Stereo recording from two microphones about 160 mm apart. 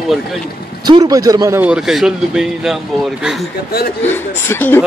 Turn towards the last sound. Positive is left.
turn(degrees=10)  # may be behind; listen again after turning